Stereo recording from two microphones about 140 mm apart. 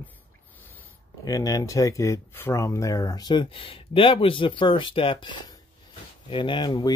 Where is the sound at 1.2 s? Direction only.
25° left (ahead or behind).